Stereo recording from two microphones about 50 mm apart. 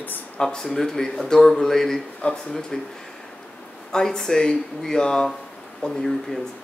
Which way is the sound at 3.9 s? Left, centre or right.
Centre.